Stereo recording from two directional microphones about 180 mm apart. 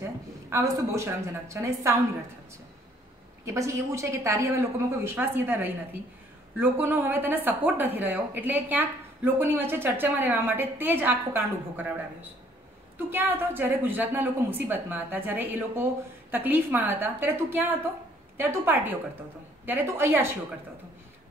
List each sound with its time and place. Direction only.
0.0 s a woman's voice: 15° right (ahead or behind)
3.4 s speech: 15° right (ahead or behind)